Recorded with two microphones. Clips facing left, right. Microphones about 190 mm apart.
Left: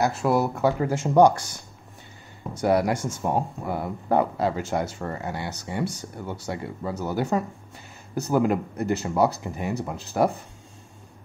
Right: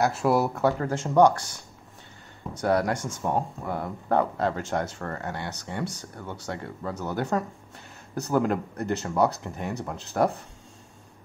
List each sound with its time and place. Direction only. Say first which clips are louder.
0.0 s speech: left 1 dB; 5° right (ahead or behind)
2.5 s speech: left 2 dB; 10° left (ahead or behind)